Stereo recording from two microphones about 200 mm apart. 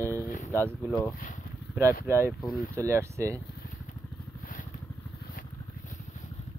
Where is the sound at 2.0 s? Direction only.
10° right (ahead or behind).